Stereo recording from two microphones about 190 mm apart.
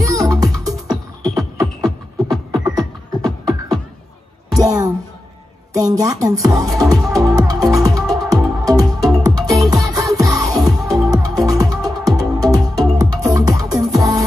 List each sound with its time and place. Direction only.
0.0 s music: 15° right (ahead or behind)
5.8 s speech: 20° right (ahead or behind)
6.8 s music: 20° right (ahead or behind)